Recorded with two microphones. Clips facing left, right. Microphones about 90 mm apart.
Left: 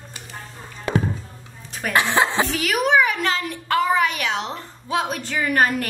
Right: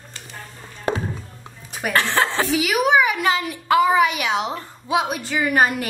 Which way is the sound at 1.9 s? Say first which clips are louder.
Left 1 dB; 15° left (ahead or behind).